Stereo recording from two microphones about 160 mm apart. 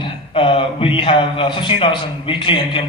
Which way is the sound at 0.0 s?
35° left (ahead or behind).